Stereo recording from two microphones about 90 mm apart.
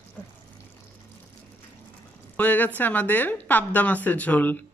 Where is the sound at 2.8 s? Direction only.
20° left (ahead or behind).